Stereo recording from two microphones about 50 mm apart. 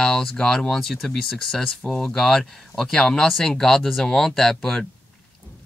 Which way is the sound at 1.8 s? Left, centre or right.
Centre.